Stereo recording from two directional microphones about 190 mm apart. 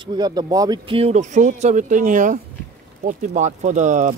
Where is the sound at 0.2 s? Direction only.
20° right (ahead or behind).